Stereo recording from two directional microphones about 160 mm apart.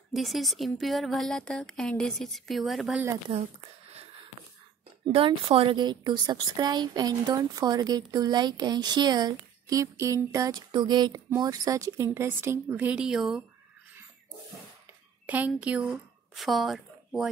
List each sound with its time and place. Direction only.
0.1 s speech: centre (ahead or behind)
5.0 s a woman's voice: 35° right (ahead or behind); by 13.4 s 5° right (ahead or behind)
15.2 s a woman's voice: 10° right (ahead or behind)